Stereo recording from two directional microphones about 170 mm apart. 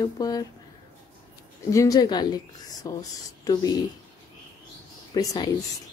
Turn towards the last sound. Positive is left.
turn(degrees=20)  # may be behind; listen again after turning